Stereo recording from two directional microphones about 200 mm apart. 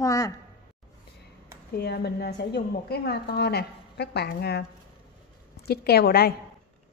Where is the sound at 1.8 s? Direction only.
55° left (ahead or behind).